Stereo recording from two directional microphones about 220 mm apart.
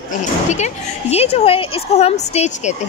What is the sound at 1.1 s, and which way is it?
A woman's voice, 25° left (ahead or behind).